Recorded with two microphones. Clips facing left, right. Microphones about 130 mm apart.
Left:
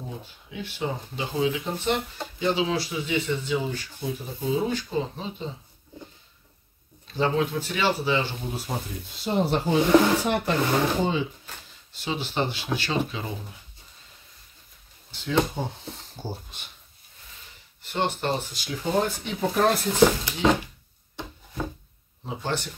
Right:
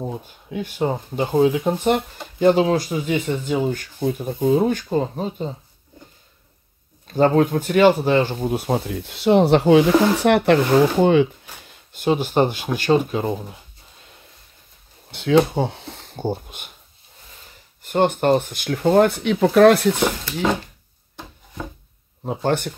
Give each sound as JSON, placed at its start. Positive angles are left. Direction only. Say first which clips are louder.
{"t": 0.0, "sound": "speech", "louder": "right 9 dB", "side_deg": -50}
{"t": 7.1, "sound": "speech", "louder": "right 8 dB", "side_deg": -50}
{"t": 8.5, "sound": "speech", "louder": "right 10 dB", "side_deg": -65}
{"t": 11.6, "sound": "speech", "louder": "right 13 dB", "side_deg": -50}
{"t": 15.0, "sound": "speech", "louder": "right 9 dB", "side_deg": -70}
{"t": 17.8, "sound": "speech", "louder": "right 9 dB", "side_deg": -50}
{"t": 22.2, "sound": "speech", "louder": "right 8 dB", "side_deg": -50}